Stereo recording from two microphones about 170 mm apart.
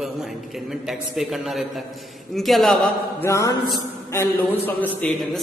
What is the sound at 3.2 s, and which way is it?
Mantra, 15° left (ahead or behind).